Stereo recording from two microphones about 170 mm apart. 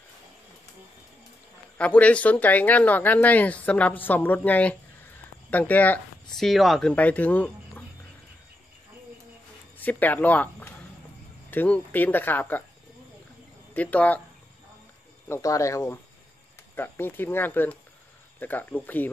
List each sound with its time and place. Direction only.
1.8 s speech: 10° left (ahead or behind)
9.8 s speech: 10° left (ahead or behind)
13.7 s speech: 10° left (ahead or behind)
15.2 s speech: 15° left (ahead or behind)